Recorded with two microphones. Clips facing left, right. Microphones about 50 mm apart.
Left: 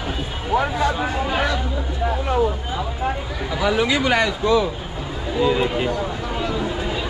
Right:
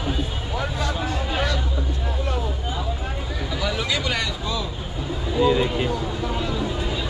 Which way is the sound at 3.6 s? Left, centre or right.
Centre.